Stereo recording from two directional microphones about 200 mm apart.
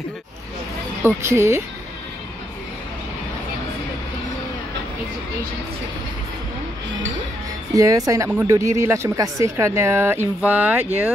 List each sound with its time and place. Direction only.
1.0 s speech: 10° right (ahead or behind)
7.7 s speech: 15° right (ahead or behind)